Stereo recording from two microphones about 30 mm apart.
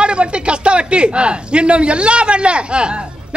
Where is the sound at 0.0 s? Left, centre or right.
Right.